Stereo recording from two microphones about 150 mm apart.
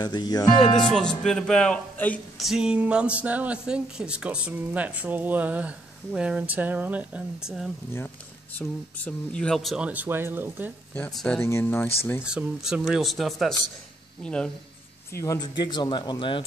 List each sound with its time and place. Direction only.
0.0 s speech: 30° left (ahead or behind)
0.8 s speech: 5° left (ahead or behind)
2.3 s speech: centre (ahead or behind)
8.5 s speech: 10° left (ahead or behind); by 10.7 s 15° right (ahead or behind)
11.0 s speech: 10° left (ahead or behind)
12.2 s speech: 5° right (ahead or behind)
15.1 s speech: 25° left (ahead or behind)